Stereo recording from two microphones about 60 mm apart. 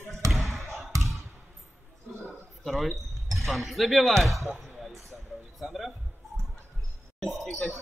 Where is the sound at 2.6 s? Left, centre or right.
Centre.